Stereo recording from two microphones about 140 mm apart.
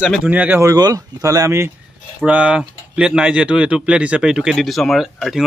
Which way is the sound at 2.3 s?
10° right (ahead or behind).